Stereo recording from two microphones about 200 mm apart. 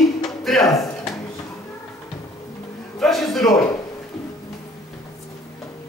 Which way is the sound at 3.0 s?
Centre (ahead or behind).